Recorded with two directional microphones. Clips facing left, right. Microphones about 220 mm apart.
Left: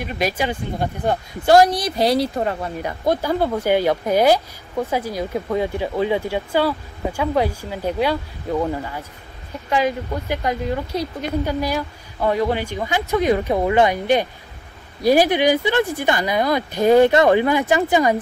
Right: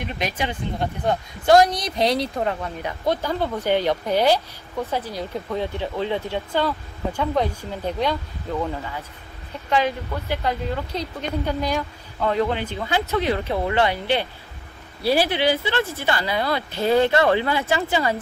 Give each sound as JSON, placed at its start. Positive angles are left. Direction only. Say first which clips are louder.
{"t": 0.0, "sound": "speech", "louder": "left 4 dB", "side_deg": 10}
{"t": 9.7, "sound": "speech", "louder": "left 2 dB", "side_deg": 10}